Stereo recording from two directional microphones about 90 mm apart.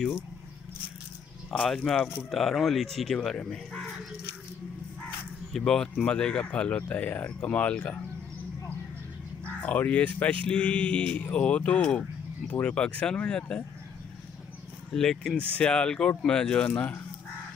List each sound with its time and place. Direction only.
1.7 s speech: 5° left (ahead or behind)
5.7 s speech: 10° left (ahead or behind)
9.6 s speech: 15° left (ahead or behind)
14.9 s speech: 5° left (ahead or behind)